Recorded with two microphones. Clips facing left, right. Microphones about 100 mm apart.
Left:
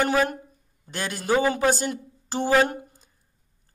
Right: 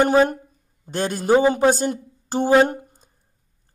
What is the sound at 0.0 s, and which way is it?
A man's voice, 40° right (ahead or behind).